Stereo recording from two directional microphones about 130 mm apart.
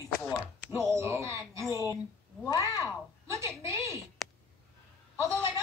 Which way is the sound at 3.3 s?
20° right (ahead or behind).